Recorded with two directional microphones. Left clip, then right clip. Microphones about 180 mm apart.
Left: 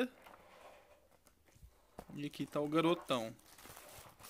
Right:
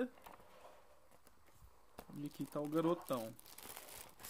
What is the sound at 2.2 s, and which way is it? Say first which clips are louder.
Speech: left 5 dB; 15° right (ahead or behind).